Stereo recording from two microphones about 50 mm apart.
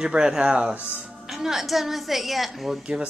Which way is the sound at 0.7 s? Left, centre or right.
Right.